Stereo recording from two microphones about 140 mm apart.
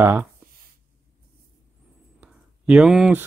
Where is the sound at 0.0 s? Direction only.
15° right (ahead or behind).